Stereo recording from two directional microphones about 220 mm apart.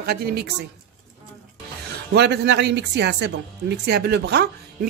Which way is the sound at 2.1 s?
50° right (ahead or behind).